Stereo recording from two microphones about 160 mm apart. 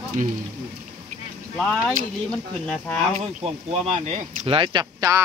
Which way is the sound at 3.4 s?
45° right (ahead or behind).